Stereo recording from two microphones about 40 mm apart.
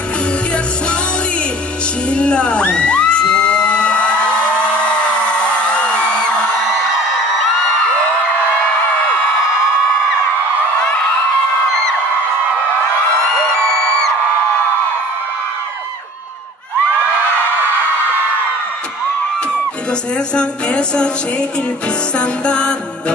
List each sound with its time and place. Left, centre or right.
2.0 s crowd: left
19.9 s music: left